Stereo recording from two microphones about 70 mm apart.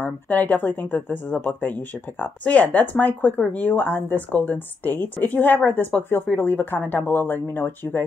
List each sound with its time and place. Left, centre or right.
0.0 s speech: left